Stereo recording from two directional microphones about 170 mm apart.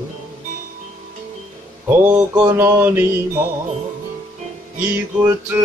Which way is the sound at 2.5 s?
15° right (ahead or behind).